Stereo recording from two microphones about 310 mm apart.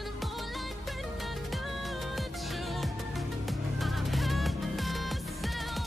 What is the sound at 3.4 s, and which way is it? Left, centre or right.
Music, centre.